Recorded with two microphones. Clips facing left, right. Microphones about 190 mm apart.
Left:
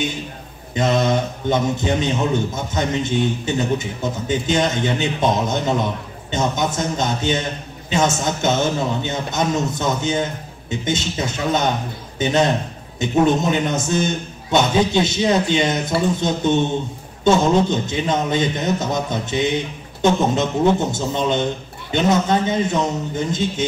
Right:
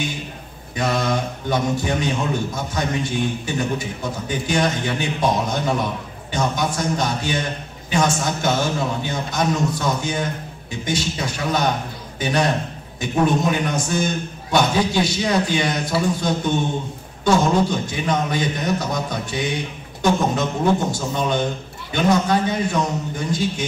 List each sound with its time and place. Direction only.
0.7 s a man's voice: 20° left (ahead or behind)